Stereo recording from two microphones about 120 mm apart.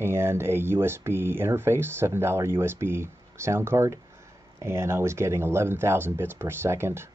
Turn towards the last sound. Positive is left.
turn(degrees=-20)  # may be behind; listen again after turning